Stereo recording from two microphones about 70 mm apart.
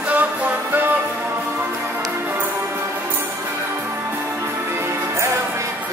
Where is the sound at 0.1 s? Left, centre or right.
Right.